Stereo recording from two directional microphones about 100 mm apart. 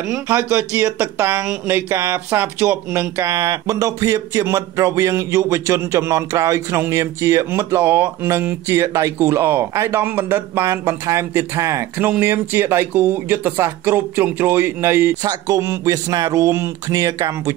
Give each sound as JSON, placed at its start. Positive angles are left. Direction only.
{"t": 0.3, "sound": "speech", "side_deg": -20}